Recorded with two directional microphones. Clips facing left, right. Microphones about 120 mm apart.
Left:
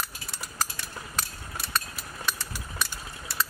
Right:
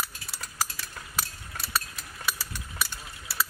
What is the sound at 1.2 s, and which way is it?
Mechanisms, 5° right (ahead or behind).